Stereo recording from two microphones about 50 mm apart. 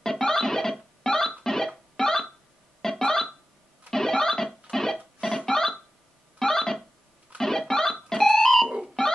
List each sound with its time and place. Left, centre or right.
0.0 s a sound: centre
1.0 s music: centre
2.8 s a sound: centre
3.9 s music: centre
6.4 s guitar: centre
7.3 s music: centre